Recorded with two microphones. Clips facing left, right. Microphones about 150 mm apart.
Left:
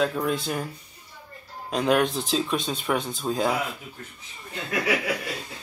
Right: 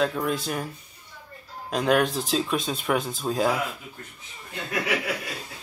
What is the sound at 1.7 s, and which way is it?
Speech, centre (ahead or behind).